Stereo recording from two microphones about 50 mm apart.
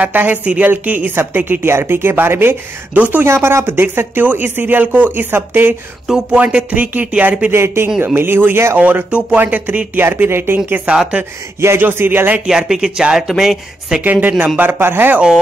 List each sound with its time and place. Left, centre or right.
0.0 s speech: right
3.0 s speech: right
3.3 s speech: right
4.3 s speech: right
6.1 s speech: centre
6.4 s speech: right
7.5 s speech: right
8.7 s speech: right
10.1 s speech: right
11.2 s speech: right
11.8 s speech: right
12.4 s speech: centre
14.0 s speech: right
14.6 s speech: right